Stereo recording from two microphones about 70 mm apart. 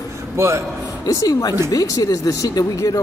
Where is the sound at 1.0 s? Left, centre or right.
Left.